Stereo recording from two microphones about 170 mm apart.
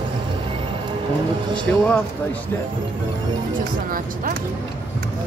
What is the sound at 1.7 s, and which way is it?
Speech, 10° left (ahead or behind).